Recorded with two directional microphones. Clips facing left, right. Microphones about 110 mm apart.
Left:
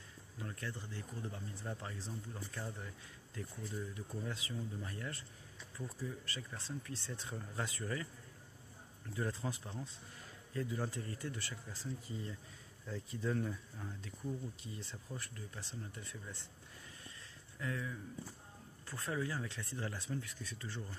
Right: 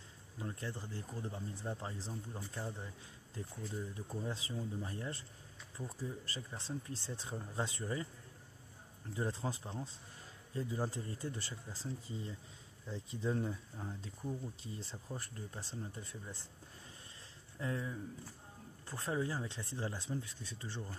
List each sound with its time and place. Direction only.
0.4 s speech: 25° right (ahead or behind)
9.1 s speech: 25° right (ahead or behind)
17.6 s speech: 30° right (ahead or behind)